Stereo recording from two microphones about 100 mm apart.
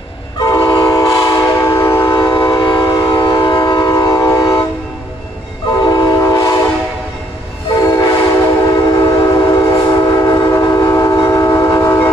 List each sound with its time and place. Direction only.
0.4 s train: 45° left (ahead or behind); by 2.1 s 25° left (ahead or behind)
2.1 s train: 45° left (ahead or behind)
5.8 s train: 40° left (ahead or behind)
7.7 s train: 35° left (ahead or behind)